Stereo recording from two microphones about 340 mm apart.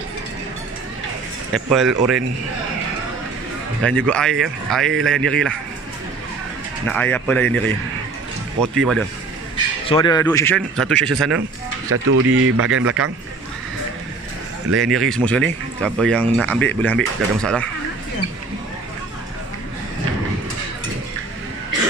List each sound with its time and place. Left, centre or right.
1.5 s speech: centre
4.0 s speech: centre
6.9 s speech: centre
8.7 s speech: centre
9.8 s speech: centre
11.9 s speech: right
14.8 s speech: centre